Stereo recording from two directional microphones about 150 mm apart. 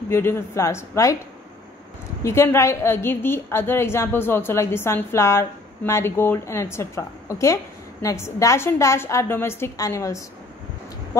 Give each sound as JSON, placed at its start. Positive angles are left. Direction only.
{"t": 0.1, "sound": "a woman's voice", "side_deg": 15}
{"t": 2.2, "sound": "a woman's voice", "side_deg": 15}